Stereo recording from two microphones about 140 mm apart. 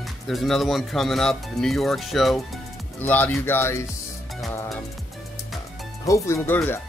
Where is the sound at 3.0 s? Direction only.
15° left (ahead or behind).